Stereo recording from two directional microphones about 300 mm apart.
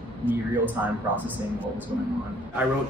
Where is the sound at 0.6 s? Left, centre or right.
Centre.